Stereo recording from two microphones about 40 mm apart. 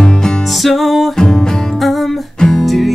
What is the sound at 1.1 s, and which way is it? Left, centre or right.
Music, centre.